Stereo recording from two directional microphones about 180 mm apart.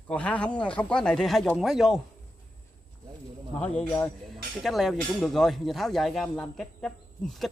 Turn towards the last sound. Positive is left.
turn(degrees=5)  # may be behind; listen again after turning